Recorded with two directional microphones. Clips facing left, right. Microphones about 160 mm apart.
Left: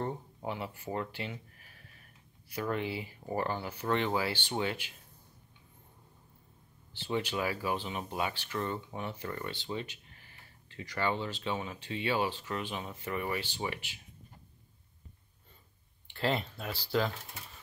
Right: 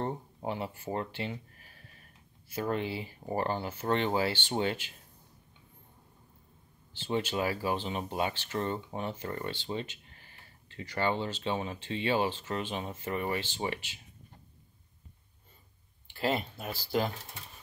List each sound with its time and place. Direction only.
0.0 s speech: 30° right (ahead or behind)
2.5 s speech: 30° right (ahead or behind)
7.2 s speech: 30° right (ahead or behind)
9.1 s speech: 40° right (ahead or behind)
9.4 s speech: 30° right (ahead or behind)
16.2 s speech: 10° right (ahead or behind)